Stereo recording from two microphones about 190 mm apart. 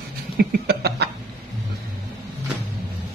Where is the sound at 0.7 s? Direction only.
60° right (ahead or behind).